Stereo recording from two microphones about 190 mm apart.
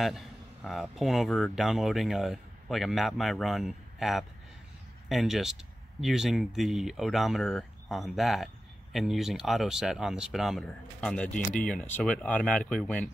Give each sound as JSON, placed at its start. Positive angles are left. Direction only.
{"t": 0.0, "sound": "speech", "side_deg": 0}